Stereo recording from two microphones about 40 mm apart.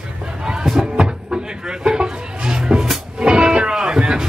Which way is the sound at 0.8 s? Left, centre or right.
Centre.